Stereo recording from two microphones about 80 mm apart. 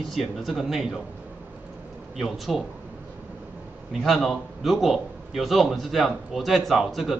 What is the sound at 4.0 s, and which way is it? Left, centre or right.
A man's voice, centre.